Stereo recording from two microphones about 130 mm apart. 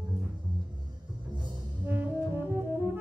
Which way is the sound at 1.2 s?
35° right (ahead or behind).